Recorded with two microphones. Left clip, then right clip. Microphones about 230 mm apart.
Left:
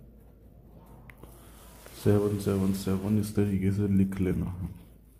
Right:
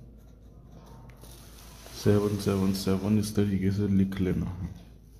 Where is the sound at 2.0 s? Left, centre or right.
Centre.